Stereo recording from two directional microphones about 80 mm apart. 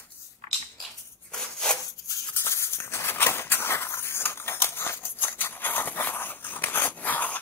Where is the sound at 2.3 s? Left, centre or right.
Left.